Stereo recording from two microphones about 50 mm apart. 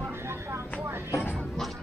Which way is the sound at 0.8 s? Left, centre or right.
Right.